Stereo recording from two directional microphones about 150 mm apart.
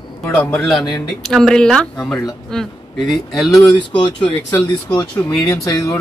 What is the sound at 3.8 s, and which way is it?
Speech, 30° left (ahead or behind).